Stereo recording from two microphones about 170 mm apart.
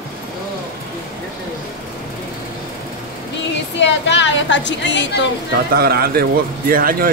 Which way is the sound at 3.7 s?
90° left.